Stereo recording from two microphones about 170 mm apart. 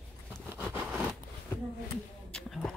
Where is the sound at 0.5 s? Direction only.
15° right (ahead or behind).